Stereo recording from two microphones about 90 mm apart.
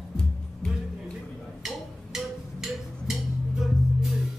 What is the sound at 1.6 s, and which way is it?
Music, 5° right (ahead or behind).